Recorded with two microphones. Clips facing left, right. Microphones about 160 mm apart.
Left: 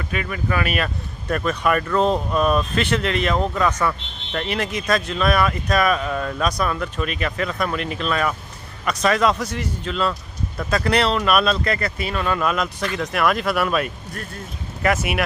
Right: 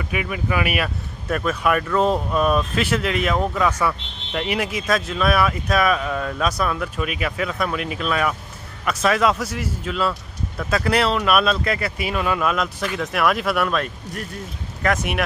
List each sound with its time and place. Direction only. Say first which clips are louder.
0.1 s speech: even; 10° right (ahead or behind); by 15.2 s 5° left (ahead or behind)